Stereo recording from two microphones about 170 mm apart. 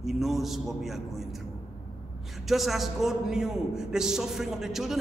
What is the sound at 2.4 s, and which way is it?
A man's voice, centre (ahead or behind).